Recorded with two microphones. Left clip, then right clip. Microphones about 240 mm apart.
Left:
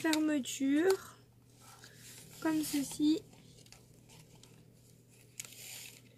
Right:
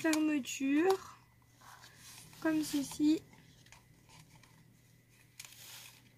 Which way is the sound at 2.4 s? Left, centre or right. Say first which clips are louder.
Even; centre.